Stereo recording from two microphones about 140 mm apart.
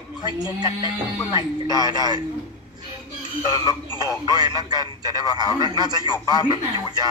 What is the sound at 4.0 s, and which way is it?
Speech, 25° right (ahead or behind).